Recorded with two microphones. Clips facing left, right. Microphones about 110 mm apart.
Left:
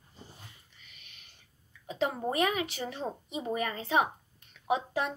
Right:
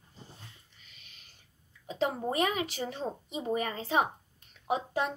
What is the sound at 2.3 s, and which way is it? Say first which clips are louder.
A woman's voice: even; 35° right (ahead or behind).